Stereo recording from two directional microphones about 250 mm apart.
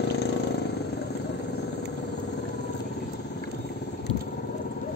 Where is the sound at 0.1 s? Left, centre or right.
Left.